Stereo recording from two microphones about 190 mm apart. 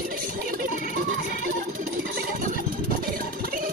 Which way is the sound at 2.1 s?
50° right (ahead or behind).